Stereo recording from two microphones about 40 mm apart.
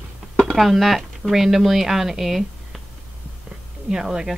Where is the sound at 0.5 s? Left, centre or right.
Centre.